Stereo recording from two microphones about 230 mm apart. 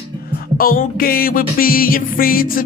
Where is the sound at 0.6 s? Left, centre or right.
Left.